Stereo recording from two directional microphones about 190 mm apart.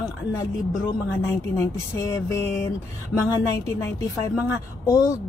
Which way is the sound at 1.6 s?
15° left (ahead or behind).